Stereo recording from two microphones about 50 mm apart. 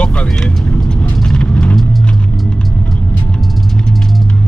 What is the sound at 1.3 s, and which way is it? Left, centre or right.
Vehicle, left.